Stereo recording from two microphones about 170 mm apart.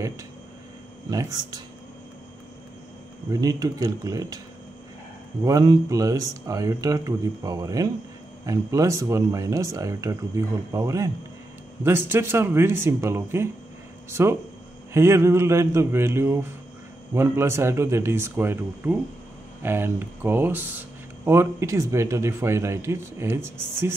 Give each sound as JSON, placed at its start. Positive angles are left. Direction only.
{"t": 1.1, "sound": "speech", "side_deg": -20}
{"t": 3.3, "sound": "speech", "side_deg": -20}
{"t": 5.4, "sound": "speech", "side_deg": -20}